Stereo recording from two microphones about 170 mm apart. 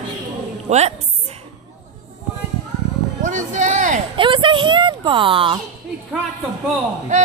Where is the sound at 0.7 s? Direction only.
40° right (ahead or behind).